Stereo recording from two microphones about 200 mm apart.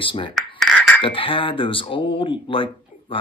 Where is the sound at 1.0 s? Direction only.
25° left (ahead or behind).